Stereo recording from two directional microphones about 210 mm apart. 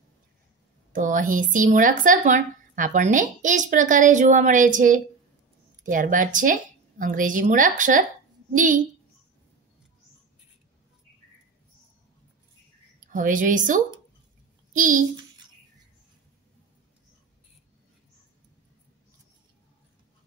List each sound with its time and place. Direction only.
0.9 s speech: 40° right (ahead or behind)
13.1 s a child's voice: 40° right (ahead or behind)